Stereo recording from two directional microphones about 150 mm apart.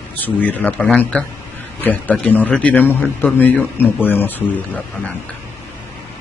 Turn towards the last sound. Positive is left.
turn(degrees=10)  # may be behind; listen again after turning